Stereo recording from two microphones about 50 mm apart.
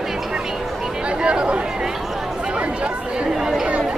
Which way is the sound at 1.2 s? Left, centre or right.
Centre.